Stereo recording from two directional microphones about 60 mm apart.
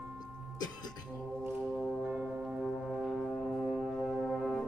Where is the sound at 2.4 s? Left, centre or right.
Centre.